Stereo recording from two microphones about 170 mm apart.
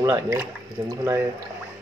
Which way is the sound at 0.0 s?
15° right (ahead or behind).